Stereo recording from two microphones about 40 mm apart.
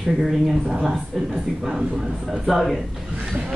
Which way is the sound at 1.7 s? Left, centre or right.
Right.